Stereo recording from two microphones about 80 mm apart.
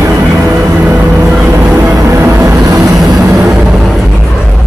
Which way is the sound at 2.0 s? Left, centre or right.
Right.